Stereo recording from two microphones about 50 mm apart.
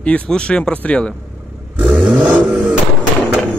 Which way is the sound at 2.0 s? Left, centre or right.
Right.